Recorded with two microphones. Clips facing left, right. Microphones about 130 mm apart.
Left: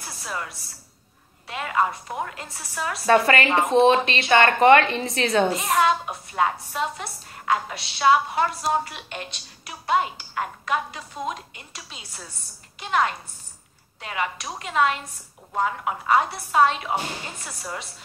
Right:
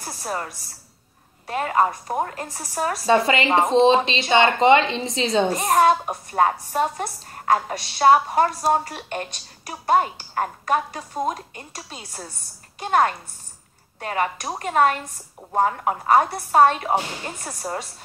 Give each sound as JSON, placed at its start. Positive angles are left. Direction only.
{"t": 0.0, "sound": "a sound", "side_deg": -45}
{"t": 1.5, "sound": "a woman's voice", "side_deg": -40}
{"t": 3.1, "sound": "speech", "side_deg": -20}
{"t": 5.5, "sound": "a woman's voice", "side_deg": -45}